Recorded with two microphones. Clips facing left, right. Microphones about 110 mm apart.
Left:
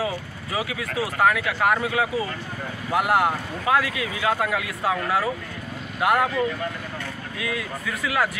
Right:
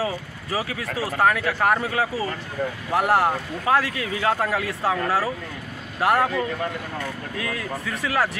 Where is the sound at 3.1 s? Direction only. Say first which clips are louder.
Right 1 dB; 35° right (ahead or behind).